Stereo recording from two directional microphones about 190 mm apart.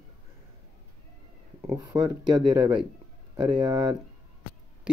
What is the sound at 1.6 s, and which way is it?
Speech, 20° right (ahead or behind).